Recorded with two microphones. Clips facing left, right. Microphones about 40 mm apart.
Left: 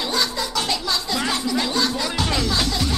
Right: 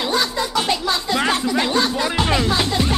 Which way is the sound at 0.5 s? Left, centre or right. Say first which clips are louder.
Right 4 dB; right.